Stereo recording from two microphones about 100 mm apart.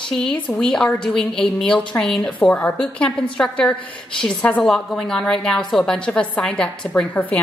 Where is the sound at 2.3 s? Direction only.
15° left (ahead or behind).